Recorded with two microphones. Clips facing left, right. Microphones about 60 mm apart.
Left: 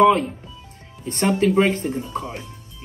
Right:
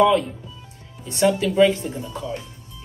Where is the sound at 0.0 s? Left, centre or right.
Left.